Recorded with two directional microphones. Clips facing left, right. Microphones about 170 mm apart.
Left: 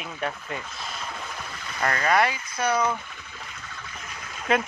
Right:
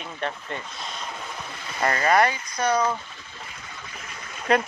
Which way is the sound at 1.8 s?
15° right (ahead or behind).